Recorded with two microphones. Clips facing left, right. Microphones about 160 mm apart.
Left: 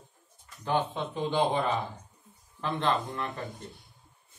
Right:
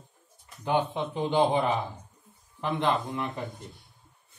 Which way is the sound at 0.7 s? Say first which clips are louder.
Right 2 dB; 15° right (ahead or behind).